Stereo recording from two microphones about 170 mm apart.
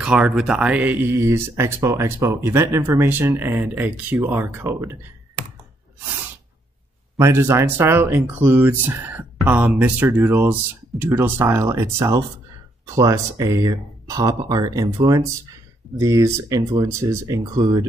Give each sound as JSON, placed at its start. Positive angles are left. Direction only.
{"t": 0.0, "sound": "speech", "side_deg": -5}
{"t": 7.2, "sound": "speech", "side_deg": -15}